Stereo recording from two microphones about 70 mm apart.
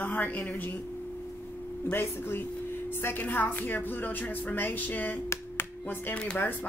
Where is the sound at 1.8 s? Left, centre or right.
Left.